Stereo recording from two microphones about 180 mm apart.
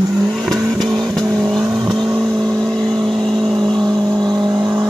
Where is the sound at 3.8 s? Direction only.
25° right (ahead or behind).